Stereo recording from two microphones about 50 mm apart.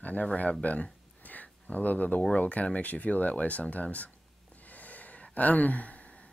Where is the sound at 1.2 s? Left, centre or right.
Left.